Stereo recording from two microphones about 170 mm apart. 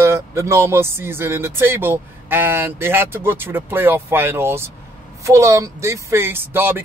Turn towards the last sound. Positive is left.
turn(degrees=-15)  # may be behind; listen again after turning